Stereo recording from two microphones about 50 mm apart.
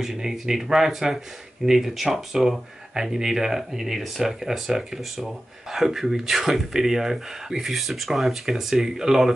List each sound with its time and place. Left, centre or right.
0.0 s speech: centre